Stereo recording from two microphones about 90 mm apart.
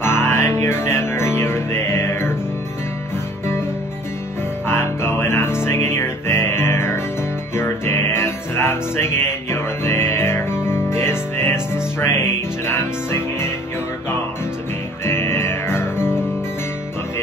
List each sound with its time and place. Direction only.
0.0 s music: 30° left (ahead or behind)
4.6 s music: 25° left (ahead or behind)
15.0 s music: 25° left (ahead or behind)